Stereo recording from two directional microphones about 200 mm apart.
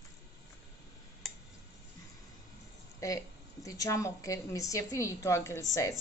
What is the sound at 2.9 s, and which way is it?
A woman's voice, 15° left (ahead or behind).